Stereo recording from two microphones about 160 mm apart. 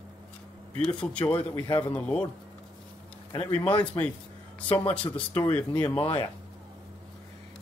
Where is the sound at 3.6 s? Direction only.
35° left (ahead or behind).